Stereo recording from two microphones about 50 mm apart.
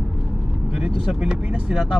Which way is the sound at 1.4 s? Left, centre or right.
Right.